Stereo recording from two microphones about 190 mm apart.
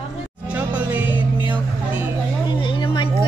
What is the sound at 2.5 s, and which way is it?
Music, 25° left (ahead or behind).